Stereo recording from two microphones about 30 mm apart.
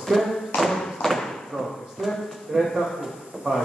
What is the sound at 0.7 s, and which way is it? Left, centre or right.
Thump, centre.